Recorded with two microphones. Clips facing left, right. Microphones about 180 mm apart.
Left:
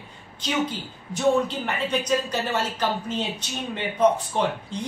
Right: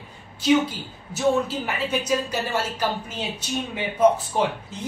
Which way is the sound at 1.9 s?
10° right (ahead or behind).